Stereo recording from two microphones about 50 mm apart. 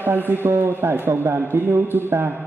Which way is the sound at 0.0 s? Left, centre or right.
Right.